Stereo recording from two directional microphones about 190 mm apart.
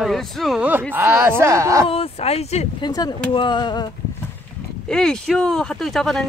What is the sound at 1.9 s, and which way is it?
Speech, 30° left (ahead or behind).